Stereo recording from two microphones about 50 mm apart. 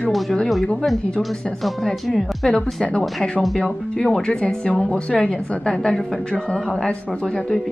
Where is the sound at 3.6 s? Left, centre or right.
Centre.